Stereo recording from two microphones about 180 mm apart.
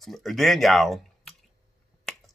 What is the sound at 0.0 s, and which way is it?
Speech, centre (ahead or behind).